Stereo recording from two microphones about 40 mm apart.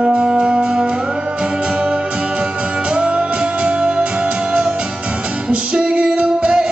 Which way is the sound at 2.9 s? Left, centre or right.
Right.